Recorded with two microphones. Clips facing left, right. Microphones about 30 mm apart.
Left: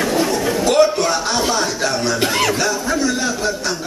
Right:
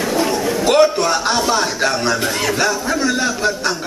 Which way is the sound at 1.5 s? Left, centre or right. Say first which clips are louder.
Right 2 dB; centre.